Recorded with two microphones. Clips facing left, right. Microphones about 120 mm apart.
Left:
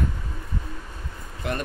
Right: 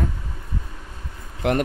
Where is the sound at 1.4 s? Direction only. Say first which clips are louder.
Right 8 dB; 90° right.